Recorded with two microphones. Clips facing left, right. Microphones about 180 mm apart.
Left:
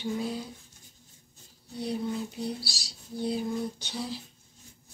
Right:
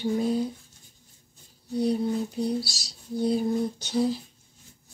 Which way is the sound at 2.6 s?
45° right (ahead or behind).